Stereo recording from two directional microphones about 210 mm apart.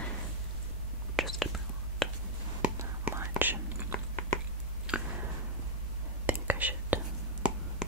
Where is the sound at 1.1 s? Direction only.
Centre (ahead or behind).